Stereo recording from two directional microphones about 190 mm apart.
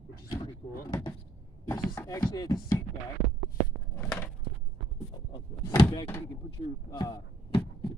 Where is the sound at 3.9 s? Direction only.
10° left (ahead or behind).